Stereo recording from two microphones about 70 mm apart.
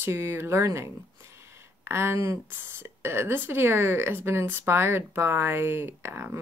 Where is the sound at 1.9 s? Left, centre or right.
Right.